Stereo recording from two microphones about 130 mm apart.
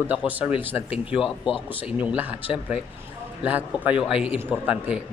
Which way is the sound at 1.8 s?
10° right (ahead or behind).